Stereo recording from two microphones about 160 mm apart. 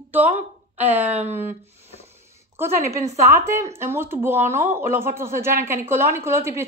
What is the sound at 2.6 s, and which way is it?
Speech, 15° right (ahead or behind).